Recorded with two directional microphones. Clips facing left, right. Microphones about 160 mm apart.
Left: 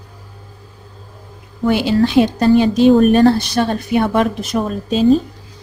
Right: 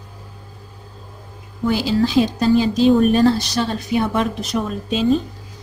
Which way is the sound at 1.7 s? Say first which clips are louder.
Left 4 dB; 65° left (ahead or behind).